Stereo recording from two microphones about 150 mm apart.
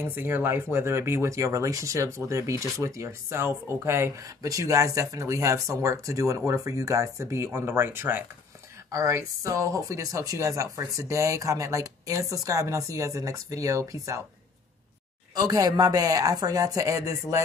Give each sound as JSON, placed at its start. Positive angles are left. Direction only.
{"t": 0.0, "sound": "speech", "side_deg": -15}
{"t": 15.3, "sound": "speech", "side_deg": -25}